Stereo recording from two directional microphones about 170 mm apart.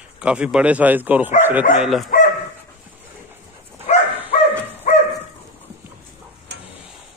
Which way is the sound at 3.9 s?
40° left (ahead or behind).